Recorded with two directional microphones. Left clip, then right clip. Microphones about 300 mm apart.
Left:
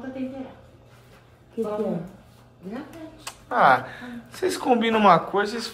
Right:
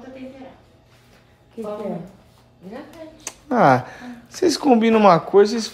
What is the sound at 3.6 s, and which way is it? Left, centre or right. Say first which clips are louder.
Speech: right 2 dB; right.